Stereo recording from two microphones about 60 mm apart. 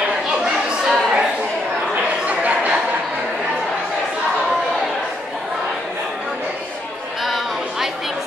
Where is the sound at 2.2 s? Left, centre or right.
Right.